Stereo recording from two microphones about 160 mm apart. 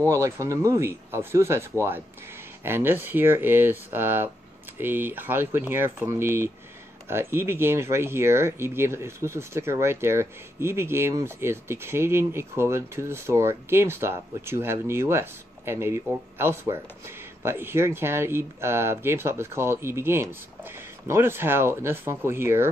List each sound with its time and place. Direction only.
0.0 s speech: 20° right (ahead or behind)